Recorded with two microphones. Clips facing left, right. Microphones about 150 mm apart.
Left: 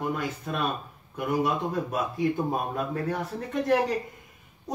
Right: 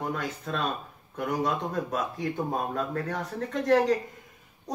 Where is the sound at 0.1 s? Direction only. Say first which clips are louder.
Left 1 dB; 15° left (ahead or behind).